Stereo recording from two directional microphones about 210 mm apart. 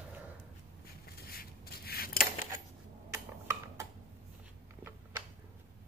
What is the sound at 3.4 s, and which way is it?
Tick-tock, 15° right (ahead or behind).